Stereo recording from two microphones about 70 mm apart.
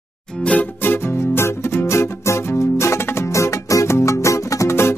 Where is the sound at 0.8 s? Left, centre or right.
Left.